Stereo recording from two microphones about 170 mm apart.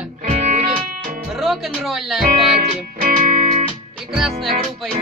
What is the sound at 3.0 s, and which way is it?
Music, 45° right (ahead or behind).